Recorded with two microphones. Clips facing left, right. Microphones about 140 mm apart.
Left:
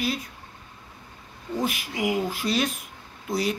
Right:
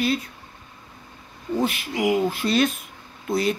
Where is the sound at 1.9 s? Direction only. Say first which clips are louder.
Right 5 dB; 20° right (ahead or behind).